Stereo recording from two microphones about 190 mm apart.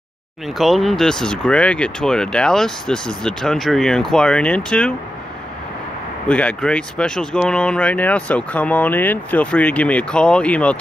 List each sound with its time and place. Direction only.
0.6 s speech: centre (ahead or behind)
6.2 s speech: 5° left (ahead or behind)